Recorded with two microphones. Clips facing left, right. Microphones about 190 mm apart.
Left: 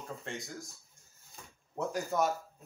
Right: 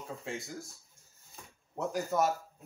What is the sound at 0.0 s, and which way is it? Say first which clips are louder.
A child's voice: right 2 dB; 5° right (ahead or behind).